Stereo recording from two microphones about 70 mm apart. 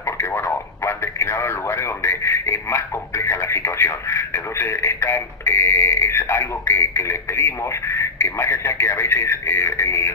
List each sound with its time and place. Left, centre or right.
0.8 s speech: left